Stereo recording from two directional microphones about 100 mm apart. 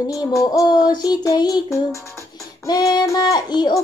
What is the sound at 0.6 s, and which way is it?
Child singing, 45° left (ahead or behind).